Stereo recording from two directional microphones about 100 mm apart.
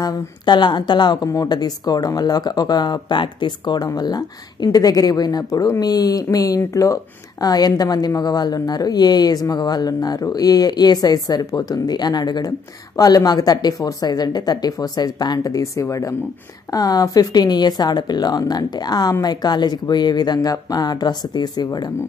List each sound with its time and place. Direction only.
0.0 s speech: 50° left (ahead or behind)